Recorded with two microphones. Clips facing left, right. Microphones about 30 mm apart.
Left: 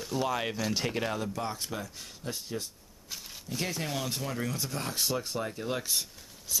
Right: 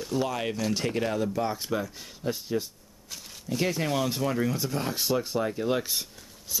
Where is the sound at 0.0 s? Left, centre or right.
Centre.